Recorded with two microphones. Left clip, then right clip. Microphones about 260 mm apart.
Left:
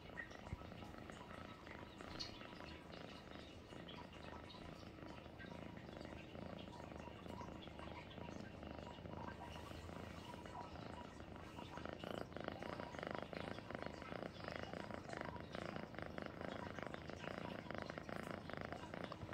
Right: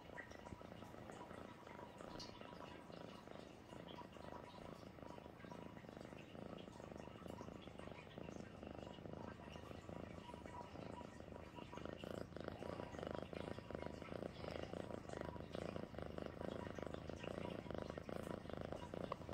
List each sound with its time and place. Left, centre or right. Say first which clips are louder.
13.0 s purr: left 1 dB; right